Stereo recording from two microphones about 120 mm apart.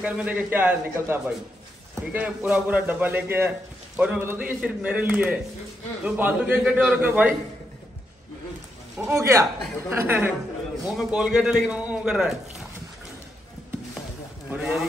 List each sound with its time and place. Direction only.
0.0 s a man's voice: 10° right (ahead or behind)
9.0 s a woman's voice: 25° right (ahead or behind); by 12.6 s 5° right (ahead or behind)
14.5 s a man's voice: 5° right (ahead or behind)